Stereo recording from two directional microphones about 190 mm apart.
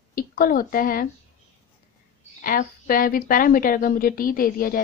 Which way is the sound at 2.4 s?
50° left (ahead or behind).